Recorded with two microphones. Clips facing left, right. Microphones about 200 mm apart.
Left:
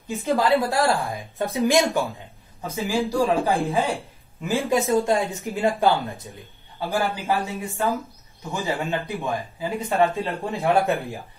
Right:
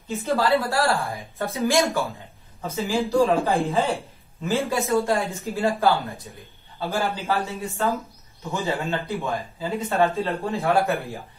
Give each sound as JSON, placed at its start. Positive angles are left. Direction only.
{"t": 0.1, "sound": "speech", "side_deg": 15}
{"t": 4.6, "sound": "speech", "side_deg": 15}
{"t": 10.8, "sound": "speech", "side_deg": 0}